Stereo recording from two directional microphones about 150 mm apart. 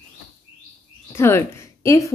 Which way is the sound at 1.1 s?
15° left (ahead or behind).